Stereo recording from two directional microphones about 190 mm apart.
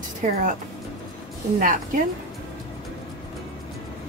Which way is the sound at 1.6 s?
45° right (ahead or behind).